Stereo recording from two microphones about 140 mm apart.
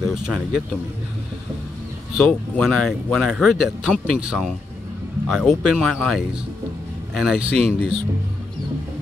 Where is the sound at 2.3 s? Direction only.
5° left (ahead or behind).